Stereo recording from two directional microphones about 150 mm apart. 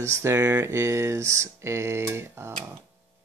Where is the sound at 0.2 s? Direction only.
20° right (ahead or behind).